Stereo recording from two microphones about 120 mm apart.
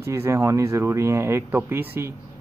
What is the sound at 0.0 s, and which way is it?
Speech, 25° right (ahead or behind).